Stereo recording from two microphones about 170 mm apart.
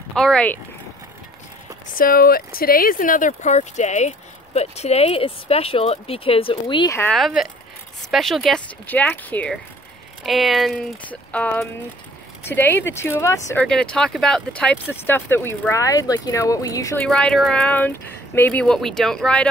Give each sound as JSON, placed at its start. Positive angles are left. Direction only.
{"t": 0.1, "sound": "speech", "side_deg": 5}
{"t": 2.0, "sound": "speech", "side_deg": 60}
{"t": 7.1, "sound": "speech", "side_deg": 0}
{"t": 13.7, "sound": "speech", "side_deg": 5}
{"t": 17.0, "sound": "speech", "side_deg": 5}